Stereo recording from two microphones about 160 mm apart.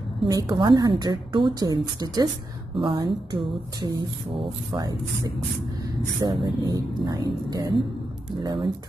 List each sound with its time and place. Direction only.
0.3 s a woman's voice: 20° right (ahead or behind)
6.4 s a woman's voice: 25° right (ahead or behind)